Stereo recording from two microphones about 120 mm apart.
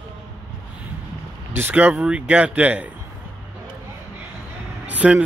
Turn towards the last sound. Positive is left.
turn(degrees=-10)  # may be behind; listen again after turning